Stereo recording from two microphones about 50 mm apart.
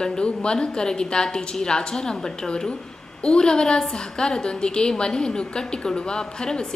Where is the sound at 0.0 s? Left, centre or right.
Centre.